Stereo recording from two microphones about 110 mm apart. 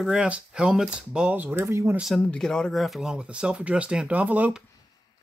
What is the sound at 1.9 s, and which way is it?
Speech, 5° right (ahead or behind).